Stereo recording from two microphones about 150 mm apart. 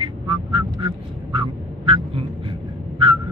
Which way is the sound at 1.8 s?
40° right (ahead or behind).